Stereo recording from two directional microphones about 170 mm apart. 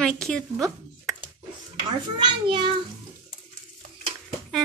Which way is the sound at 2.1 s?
30° right (ahead or behind).